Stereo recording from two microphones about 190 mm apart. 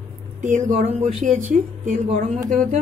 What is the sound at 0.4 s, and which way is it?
Speech, 40° right (ahead or behind).